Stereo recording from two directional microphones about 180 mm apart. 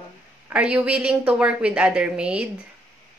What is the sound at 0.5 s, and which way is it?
A woman's voice, 5° right (ahead or behind).